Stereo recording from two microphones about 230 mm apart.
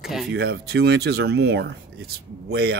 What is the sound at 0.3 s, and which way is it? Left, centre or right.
Speech, right.